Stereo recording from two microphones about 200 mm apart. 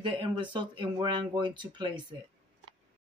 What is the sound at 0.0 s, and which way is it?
Speech, 25° right (ahead or behind).